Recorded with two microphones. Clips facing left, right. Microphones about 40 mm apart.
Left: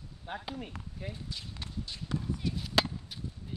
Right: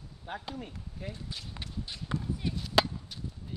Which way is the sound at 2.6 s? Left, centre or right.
Centre.